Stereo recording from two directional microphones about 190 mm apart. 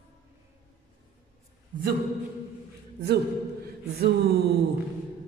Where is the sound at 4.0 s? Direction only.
55° right (ahead or behind).